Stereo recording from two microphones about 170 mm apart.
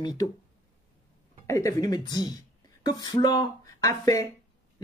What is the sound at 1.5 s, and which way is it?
Speech, 20° left (ahead or behind).